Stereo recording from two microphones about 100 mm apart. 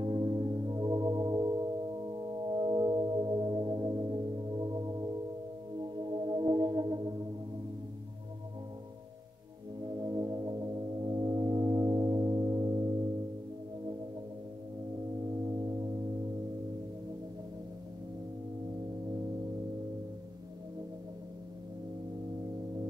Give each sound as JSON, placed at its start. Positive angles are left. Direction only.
{"t": 0.0, "sound": "music", "side_deg": -40}
{"t": 2.5, "sound": "singing bowl", "side_deg": -45}
{"t": 5.8, "sound": "music", "side_deg": -50}
{"t": 9.8, "sound": "music", "side_deg": -40}
{"t": 15.4, "sound": "music", "side_deg": -40}